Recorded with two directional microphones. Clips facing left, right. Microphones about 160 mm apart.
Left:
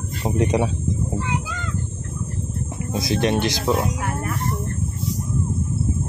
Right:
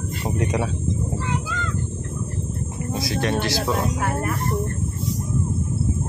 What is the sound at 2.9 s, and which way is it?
Speech, 20° left (ahead or behind).